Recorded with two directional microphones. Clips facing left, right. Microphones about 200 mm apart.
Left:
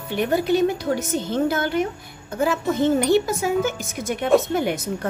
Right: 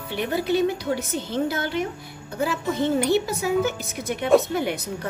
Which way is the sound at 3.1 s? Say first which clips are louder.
Left 3 dB; 50° left (ahead or behind).